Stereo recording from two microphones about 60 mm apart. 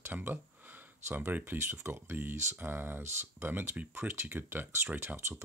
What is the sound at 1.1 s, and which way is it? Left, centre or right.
Speech, right.